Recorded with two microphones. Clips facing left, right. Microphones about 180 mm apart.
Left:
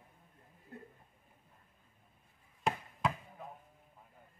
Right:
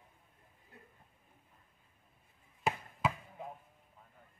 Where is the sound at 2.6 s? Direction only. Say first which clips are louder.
Even; 5° right (ahead or behind).